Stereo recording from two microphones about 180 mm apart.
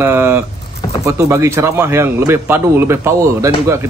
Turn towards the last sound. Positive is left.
turn(degrees=-15)  # may be behind; listen again after turning